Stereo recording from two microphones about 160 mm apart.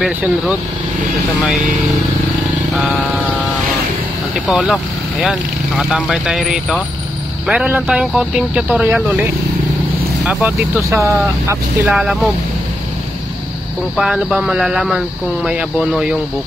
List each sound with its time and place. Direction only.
0.0 s speech: 5° right (ahead or behind)
4.5 s speech: centre (ahead or behind)
10.2 s speech: 10° right (ahead or behind)
11.9 s speech: centre (ahead or behind)
13.9 s speech: centre (ahead or behind)